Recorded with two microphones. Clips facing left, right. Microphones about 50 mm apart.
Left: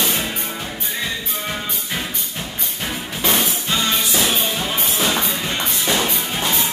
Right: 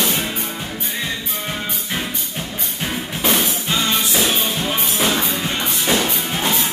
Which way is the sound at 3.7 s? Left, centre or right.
Centre.